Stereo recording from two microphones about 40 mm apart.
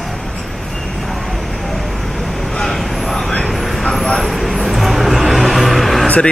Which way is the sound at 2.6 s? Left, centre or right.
Centre.